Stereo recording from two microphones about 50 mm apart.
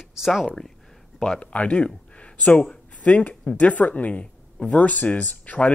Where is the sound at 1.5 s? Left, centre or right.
Left.